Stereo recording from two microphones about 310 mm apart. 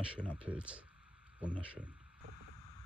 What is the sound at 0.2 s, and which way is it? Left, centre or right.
Speech, centre.